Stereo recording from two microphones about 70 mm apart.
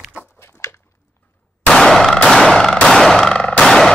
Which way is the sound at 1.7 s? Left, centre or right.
Centre.